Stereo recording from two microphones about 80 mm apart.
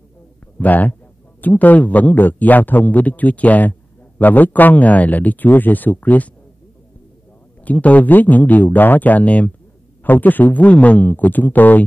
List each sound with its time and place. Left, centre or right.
0.6 s a man's voice: left
7.6 s a man's voice: centre